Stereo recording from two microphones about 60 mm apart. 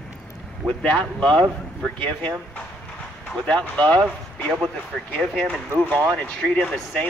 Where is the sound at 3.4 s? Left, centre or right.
Centre.